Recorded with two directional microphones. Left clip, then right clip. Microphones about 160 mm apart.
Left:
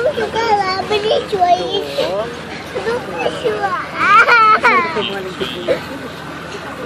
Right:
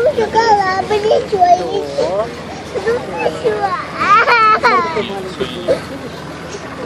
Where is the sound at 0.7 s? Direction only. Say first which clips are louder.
Right 2 dB; 25° left (ahead or behind).